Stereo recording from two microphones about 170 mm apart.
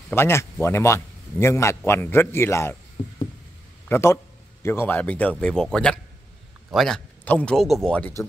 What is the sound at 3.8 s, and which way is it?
A man's voice, 15° left (ahead or behind).